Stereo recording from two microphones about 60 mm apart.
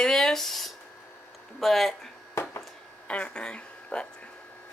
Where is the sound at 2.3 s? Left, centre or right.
Left.